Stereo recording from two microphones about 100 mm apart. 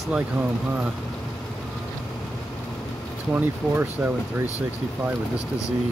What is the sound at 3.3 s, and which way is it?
Speech, 20° right (ahead or behind).